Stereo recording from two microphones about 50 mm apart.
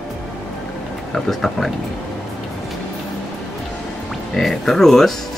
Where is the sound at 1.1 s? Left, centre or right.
Centre.